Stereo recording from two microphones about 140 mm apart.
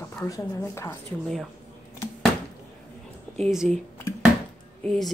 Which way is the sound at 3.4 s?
5° right (ahead or behind).